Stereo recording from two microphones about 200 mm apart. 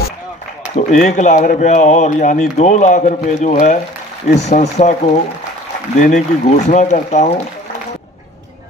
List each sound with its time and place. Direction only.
0.7 s speech: 35° left (ahead or behind)